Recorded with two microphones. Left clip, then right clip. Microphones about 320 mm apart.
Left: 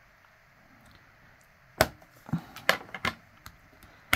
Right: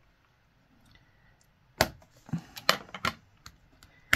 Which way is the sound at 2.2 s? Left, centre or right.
Centre.